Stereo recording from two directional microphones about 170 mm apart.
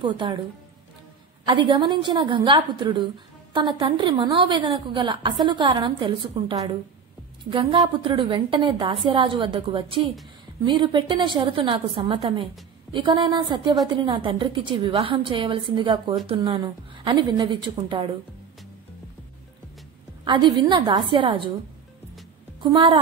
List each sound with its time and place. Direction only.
0.0 s a woman's voice: 30° right (ahead or behind)
1.4 s a woman's voice: 25° right (ahead or behind)
20.2 s a woman's voice: 25° right (ahead or behind)
22.6 s a woman's voice: 30° right (ahead or behind)